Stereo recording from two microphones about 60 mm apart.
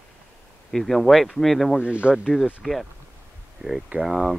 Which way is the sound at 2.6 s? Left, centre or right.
Centre.